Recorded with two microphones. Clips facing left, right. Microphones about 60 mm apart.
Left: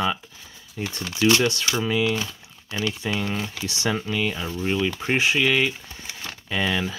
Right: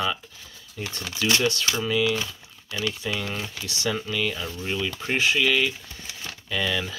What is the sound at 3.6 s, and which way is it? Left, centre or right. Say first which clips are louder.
Speech: left 2 dB; left.